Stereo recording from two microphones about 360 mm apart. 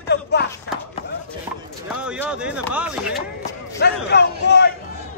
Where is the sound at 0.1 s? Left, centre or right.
Left.